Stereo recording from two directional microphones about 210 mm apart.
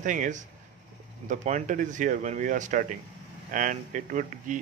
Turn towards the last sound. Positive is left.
turn(degrees=-35)  # may be behind; listen again after turning